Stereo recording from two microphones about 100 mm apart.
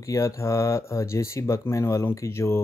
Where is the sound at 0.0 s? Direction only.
30° left (ahead or behind).